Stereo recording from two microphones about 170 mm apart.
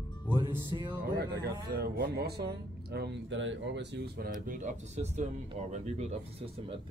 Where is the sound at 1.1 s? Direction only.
75° right (ahead or behind); by 3.6 s 90° right.